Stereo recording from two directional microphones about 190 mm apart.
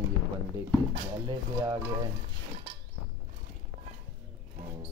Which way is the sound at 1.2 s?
20° right (ahead or behind).